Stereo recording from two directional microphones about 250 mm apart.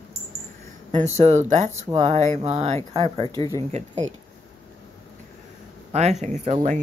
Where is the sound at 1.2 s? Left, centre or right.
Right.